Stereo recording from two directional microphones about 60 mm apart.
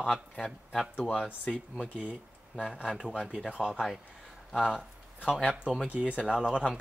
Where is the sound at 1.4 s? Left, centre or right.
Centre.